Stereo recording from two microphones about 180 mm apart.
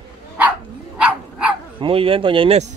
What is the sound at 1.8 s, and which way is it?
Speech, 30° right (ahead or behind).